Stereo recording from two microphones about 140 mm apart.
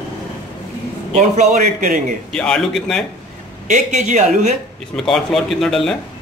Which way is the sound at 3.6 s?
60° right (ahead or behind).